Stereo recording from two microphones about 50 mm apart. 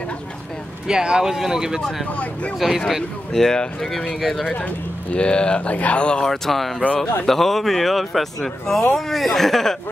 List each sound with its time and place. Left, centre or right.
0.8 s speech: centre
3.3 s speech: centre
4.6 s speech: left
5.2 s speech: centre
6.2 s speech: centre